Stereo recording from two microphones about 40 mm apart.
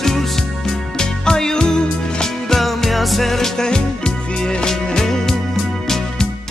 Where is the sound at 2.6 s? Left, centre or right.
Centre.